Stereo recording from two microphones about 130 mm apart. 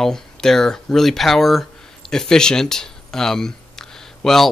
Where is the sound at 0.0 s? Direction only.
5° left (ahead or behind).